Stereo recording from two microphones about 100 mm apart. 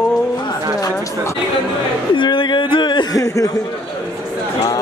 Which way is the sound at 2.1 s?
55° left (ahead or behind).